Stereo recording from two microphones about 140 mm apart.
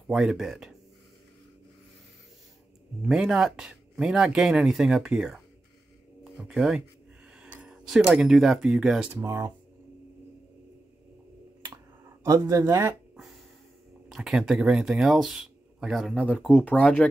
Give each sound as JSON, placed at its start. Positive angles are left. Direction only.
{"t": 0.1, "sound": "speech", "side_deg": -5}
{"t": 3.0, "sound": "speech", "side_deg": -5}
{"t": 9.2, "sound": "speech", "side_deg": -20}
{"t": 12.4, "sound": "speech", "side_deg": -20}
{"t": 13.1, "sound": "quack", "side_deg": 0}
{"t": 14.0, "sound": "speech", "side_deg": -5}